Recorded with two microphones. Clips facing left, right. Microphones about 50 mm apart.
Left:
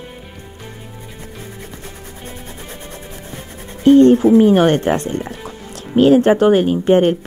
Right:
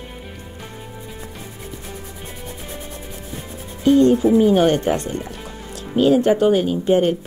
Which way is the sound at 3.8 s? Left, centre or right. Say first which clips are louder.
Left 5 dB; left.